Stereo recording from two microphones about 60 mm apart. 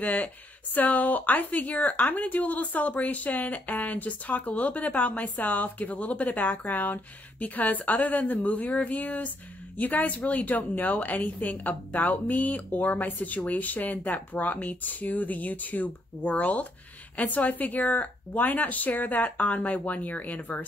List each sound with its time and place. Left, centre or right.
0.0 s a woman's voice: left